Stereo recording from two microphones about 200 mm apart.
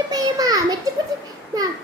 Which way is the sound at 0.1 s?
20° right (ahead or behind).